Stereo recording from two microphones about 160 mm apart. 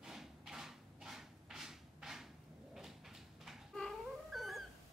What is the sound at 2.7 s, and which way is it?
Cat, centre (ahead or behind).